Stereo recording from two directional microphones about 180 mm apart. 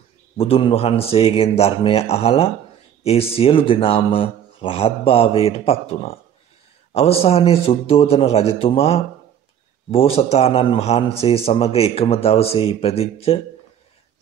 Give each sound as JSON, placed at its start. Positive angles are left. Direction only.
{"t": 0.4, "sound": "a man's voice", "side_deg": 30}